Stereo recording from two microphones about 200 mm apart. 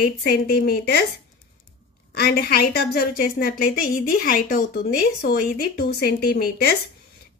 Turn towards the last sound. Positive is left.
turn(degrees=50)  # may be behind; listen again after turning